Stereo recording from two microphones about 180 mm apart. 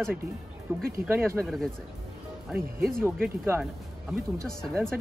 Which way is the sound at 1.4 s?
Centre (ahead or behind).